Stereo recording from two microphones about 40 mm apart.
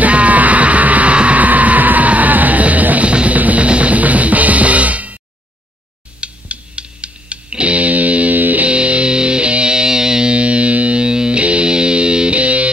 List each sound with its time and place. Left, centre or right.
0.0 s music: right
3.1 s music: right
6.2 s music: right
8.6 s music: right
10.3 s music: right